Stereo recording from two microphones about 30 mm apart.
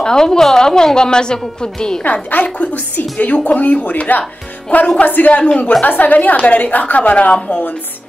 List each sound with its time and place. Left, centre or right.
0.0 s a woman's voice: left
2.6 s speech: left
5.0 s a woman's voice: left
5.6 s a woman's voice: left
5.9 s speech: left
7.0 s a woman's voice: left